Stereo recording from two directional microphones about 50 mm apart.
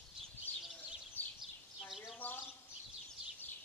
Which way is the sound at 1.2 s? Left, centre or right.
Left.